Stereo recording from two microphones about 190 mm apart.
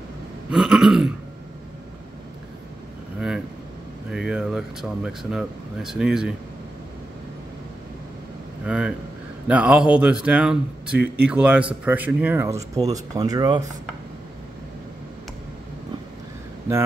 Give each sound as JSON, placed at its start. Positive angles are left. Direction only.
{"t": 0.5, "sound": "speech", "side_deg": 0}
{"t": 3.2, "sound": "vehicle", "side_deg": -5}
{"t": 4.1, "sound": "speech", "side_deg": -5}
{"t": 8.6, "sound": "speech", "side_deg": -5}